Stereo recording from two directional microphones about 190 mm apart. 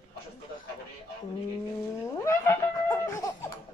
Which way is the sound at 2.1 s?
15° left (ahead or behind).